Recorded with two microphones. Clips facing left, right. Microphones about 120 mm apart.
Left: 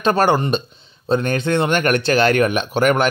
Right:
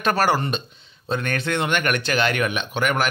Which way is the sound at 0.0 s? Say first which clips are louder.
Left 4 dB; 25° left (ahead or behind).